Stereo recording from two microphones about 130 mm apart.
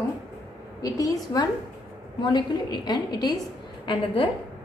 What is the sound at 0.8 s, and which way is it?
A woman's voice, 25° left (ahead or behind).